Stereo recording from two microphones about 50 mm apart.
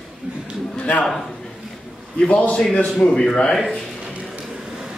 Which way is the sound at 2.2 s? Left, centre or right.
Left.